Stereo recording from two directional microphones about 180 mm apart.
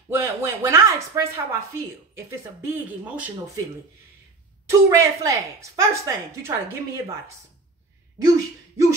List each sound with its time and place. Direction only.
0.1 s speech: 15° right (ahead or behind)
4.6 s speech: 15° right (ahead or behind)